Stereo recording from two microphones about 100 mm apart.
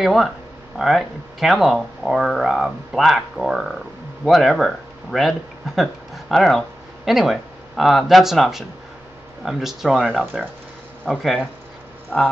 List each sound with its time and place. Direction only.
0.0 s speech: centre (ahead or behind)